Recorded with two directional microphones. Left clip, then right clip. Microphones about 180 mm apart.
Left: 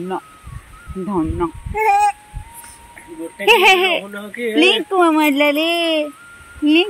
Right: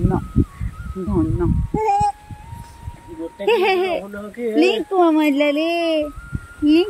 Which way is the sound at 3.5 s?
10° left (ahead or behind).